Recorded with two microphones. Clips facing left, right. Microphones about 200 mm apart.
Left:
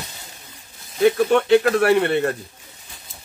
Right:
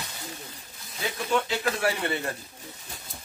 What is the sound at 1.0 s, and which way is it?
Speech, 65° left (ahead or behind).